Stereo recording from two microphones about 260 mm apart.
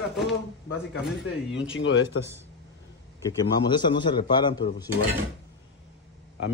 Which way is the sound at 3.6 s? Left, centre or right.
Centre.